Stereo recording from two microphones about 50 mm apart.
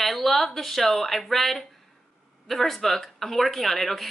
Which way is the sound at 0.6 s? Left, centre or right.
Centre.